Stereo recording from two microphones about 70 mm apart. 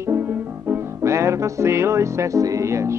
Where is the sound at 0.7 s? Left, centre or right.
Right.